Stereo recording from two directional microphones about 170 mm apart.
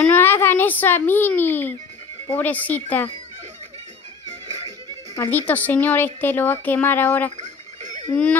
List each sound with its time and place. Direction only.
0.0 s a child's voice: 10° left (ahead or behind)
4.5 s music: 20° right (ahead or behind)
5.1 s speech: 15° left (ahead or behind)
7.3 s a sound: 45° right (ahead or behind)
8.1 s speech: 10° left (ahead or behind)